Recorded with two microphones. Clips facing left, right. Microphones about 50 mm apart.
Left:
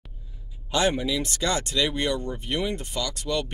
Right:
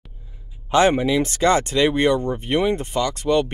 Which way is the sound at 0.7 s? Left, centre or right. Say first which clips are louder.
Right 7 dB; right.